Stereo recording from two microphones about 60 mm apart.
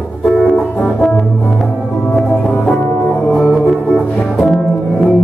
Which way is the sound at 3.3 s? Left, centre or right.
Centre.